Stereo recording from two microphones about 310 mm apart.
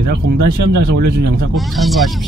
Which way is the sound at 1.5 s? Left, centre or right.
Centre.